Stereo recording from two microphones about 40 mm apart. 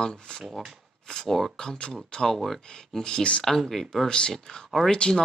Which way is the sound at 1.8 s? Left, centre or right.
Left.